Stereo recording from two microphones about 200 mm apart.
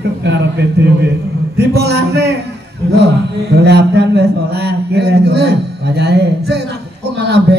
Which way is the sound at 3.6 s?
55° right (ahead or behind).